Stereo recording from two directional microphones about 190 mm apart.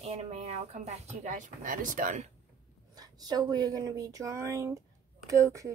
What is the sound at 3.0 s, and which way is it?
Speech, 20° right (ahead or behind).